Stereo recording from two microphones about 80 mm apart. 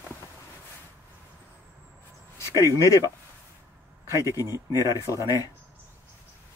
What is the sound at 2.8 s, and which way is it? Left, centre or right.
Speech, left.